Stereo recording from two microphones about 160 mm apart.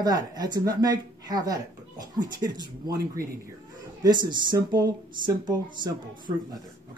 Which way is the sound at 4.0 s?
25° right (ahead or behind).